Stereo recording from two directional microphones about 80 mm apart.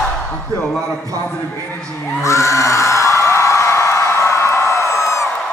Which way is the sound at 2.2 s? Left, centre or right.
Left.